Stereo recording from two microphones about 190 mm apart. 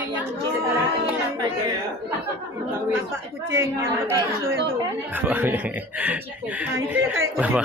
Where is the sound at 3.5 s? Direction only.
15° right (ahead or behind).